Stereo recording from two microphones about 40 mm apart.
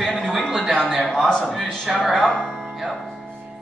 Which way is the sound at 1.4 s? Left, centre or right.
Centre.